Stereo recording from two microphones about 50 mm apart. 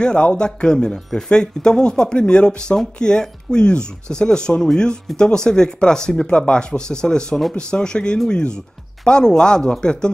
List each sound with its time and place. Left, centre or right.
0.0 s speech: centre